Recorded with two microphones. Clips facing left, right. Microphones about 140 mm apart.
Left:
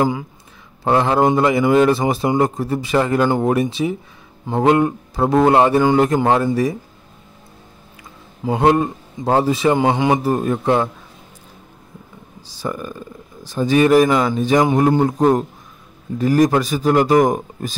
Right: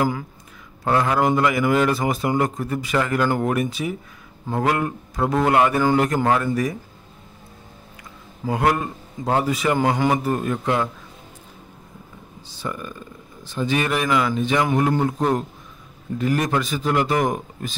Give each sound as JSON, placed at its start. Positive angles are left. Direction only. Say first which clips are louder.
{"t": 0.8, "sound": "a man's voice", "louder": "left 4 dB", "side_deg": 30}
{"t": 8.5, "sound": "a man's voice", "louder": "left 6 dB", "side_deg": 25}
{"t": 10.2, "sound": "speech", "louder": "left 5 dB", "side_deg": 30}
{"t": 12.4, "sound": "speech", "louder": "left 5 dB", "side_deg": 35}